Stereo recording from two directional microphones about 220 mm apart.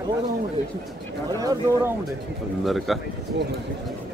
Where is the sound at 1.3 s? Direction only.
15° right (ahead or behind).